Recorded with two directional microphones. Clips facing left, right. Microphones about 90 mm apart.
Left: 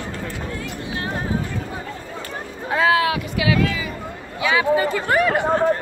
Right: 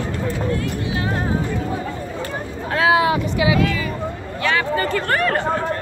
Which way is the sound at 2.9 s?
25° right (ahead or behind).